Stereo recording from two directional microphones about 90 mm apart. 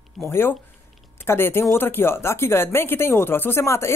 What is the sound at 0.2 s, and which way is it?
Speech, 25° left (ahead or behind).